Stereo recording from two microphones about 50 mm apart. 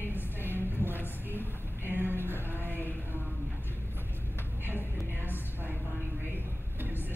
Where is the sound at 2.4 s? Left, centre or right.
Right.